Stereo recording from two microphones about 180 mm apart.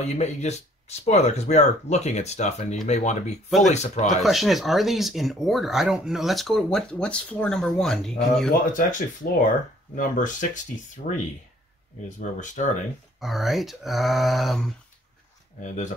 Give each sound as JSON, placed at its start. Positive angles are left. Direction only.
{"t": 0.0, "sound": "speech", "side_deg": 40}
{"t": 4.2, "sound": "speech", "side_deg": 0}
{"t": 8.7, "sound": "speech", "side_deg": 50}
{"t": 13.2, "sound": "speech", "side_deg": 0}
{"t": 15.6, "sound": "speech", "side_deg": 45}